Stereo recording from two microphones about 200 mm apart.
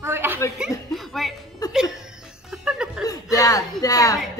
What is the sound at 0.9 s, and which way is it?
Speech, centre (ahead or behind).